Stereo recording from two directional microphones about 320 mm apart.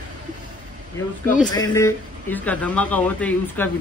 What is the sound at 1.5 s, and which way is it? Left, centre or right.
A man's voice, centre.